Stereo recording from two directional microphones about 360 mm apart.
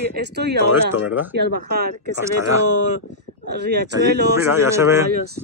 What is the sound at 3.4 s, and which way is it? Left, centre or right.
Speech, right.